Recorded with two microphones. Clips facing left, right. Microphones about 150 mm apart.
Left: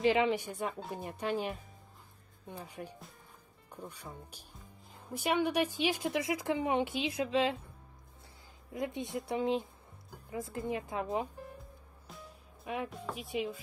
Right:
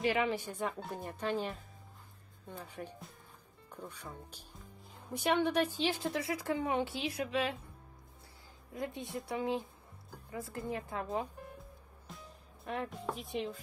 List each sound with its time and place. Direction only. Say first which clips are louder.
0.0 s speech: left 4 dB; 20° left (ahead or behind)
8.7 s speech: left 3 dB; 20° left (ahead or behind)
12.1 s music: left 1 dB; centre (ahead or behind)
12.6 s speech: even; 5° left (ahead or behind)